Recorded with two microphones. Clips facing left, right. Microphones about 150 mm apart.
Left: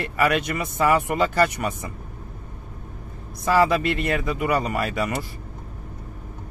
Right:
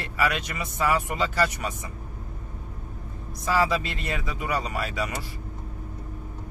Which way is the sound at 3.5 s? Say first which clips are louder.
Left 5 dB; 55° left (ahead or behind).